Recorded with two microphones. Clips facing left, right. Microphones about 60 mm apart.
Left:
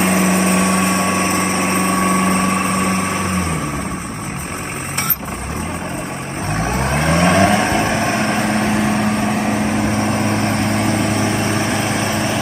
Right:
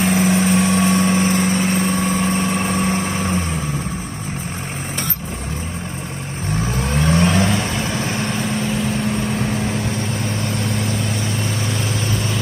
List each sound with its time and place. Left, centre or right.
0.0 s vehicle: left
1.2 s vehicle: left
2.7 s vehicle: left
6.8 s vehicle: left
10.1 s vehicle: left